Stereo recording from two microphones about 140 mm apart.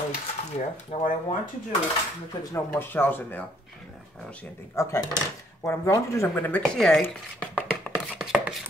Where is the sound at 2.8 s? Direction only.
15° left (ahead or behind).